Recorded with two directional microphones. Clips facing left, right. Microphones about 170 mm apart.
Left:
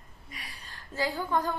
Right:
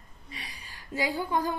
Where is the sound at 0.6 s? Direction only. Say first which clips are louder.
Right 1 dB; 15° right (ahead or behind).